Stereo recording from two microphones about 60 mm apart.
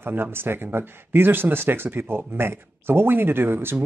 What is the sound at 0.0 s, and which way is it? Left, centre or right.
Speech, right.